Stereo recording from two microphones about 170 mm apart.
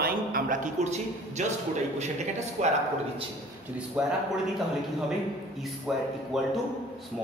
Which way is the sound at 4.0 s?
5° right (ahead or behind).